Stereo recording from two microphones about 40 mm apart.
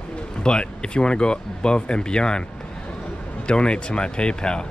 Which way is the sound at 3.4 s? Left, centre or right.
Left.